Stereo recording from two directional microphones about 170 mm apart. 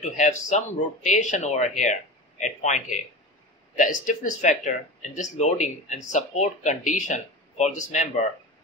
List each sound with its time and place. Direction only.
0.0 s speech: 45° left (ahead or behind)